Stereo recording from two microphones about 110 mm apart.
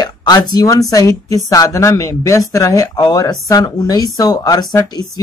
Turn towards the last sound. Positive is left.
turn(degrees=35)  # may be behind; listen again after turning